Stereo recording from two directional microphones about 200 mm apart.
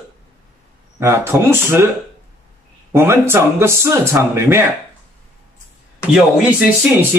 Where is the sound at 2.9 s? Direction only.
15° right (ahead or behind).